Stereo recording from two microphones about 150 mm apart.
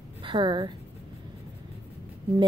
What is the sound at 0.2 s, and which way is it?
Speech, 30° right (ahead or behind).